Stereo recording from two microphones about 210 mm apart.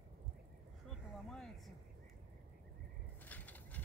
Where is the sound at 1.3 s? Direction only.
5° left (ahead or behind).